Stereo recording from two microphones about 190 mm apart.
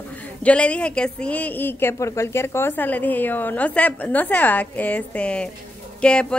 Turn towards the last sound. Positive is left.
turn(degrees=5)  # may be behind; listen again after turning